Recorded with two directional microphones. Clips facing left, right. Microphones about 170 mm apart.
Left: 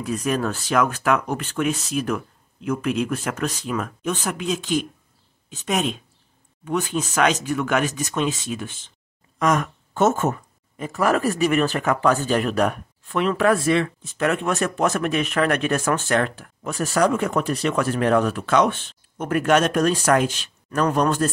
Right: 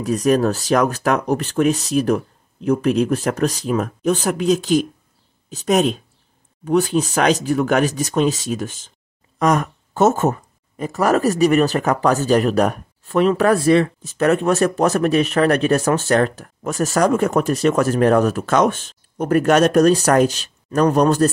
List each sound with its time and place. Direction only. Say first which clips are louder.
0.0 s speech: right 7 dB; 35° right (ahead or behind)